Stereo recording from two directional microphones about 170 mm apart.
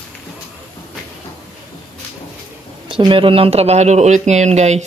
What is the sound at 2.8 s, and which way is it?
Speech, 30° right (ahead or behind).